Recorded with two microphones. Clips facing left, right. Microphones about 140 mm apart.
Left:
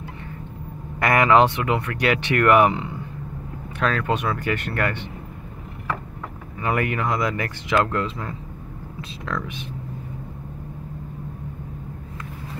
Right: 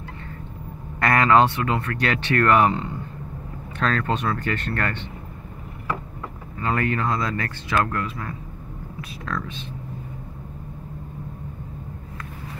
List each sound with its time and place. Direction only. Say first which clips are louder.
0.9 s speech: left 1 dB; 15° left (ahead or behind)
6.6 s speech: even; 15° left (ahead or behind)